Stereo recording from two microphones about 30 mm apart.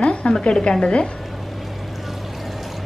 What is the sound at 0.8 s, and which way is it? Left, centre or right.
Speech, left.